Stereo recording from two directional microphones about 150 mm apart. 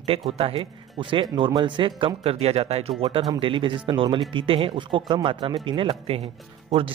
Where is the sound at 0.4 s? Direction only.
35° right (ahead or behind).